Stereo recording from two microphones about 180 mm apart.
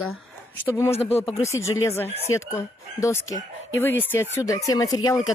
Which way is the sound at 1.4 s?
15° left (ahead or behind).